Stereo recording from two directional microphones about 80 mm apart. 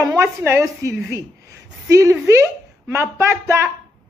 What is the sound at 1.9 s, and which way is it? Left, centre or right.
A woman's voice, right.